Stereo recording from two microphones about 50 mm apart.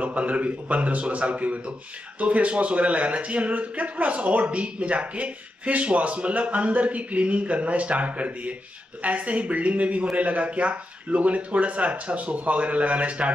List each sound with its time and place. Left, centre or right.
0.0 s a man's voice: right